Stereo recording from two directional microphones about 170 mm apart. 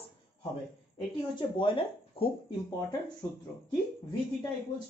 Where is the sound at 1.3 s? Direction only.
30° left (ahead or behind).